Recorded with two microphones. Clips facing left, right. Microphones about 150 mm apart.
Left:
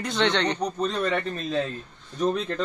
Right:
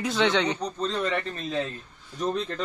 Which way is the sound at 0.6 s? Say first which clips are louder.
Left 2 dB; 10° left (ahead or behind).